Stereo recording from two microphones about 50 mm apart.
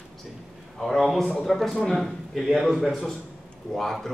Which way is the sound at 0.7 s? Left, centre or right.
Centre.